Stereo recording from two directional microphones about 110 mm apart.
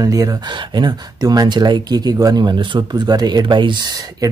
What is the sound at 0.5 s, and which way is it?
Speech, 45° right (ahead or behind).